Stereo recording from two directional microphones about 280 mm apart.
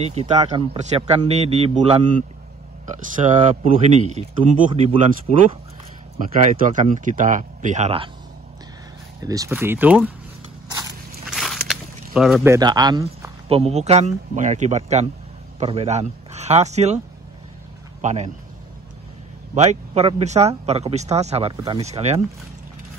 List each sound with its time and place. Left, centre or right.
0.0 s speech: right
9.2 s speech: centre
11.2 s a sound: centre
12.5 s speech: centre
18.0 s speech: right
19.5 s speech: right